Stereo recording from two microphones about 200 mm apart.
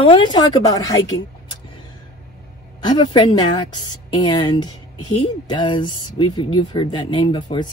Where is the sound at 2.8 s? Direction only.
20° left (ahead or behind).